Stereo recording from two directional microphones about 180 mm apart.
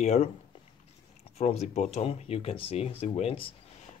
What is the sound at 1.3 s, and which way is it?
Speech, 35° left (ahead or behind).